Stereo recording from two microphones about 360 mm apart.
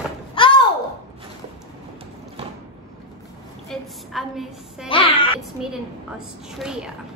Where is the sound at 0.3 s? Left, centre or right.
Centre.